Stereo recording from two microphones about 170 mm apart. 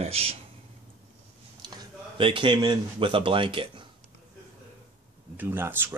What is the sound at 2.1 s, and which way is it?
Speech, 30° right (ahead or behind).